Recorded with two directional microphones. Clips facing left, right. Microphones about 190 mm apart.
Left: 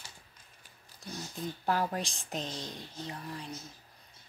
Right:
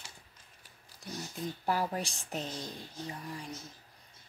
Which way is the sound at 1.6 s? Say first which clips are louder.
Left 1 dB; 10° right (ahead or behind).